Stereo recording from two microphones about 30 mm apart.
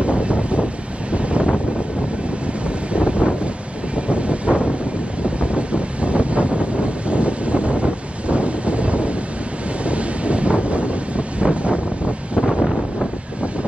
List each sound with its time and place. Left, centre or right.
0.0 s a sound: right
1.1 s wind noise: right
2.9 s wind noise: right